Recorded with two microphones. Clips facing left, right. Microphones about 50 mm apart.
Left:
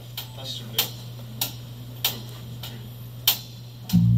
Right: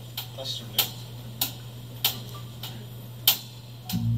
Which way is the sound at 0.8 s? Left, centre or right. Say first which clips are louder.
Left 1 dB; centre.